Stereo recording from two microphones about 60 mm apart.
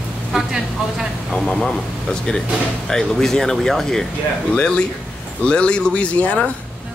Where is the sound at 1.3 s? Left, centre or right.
Centre.